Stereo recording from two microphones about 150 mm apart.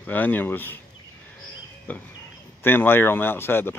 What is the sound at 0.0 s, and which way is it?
Speech, 10° left (ahead or behind).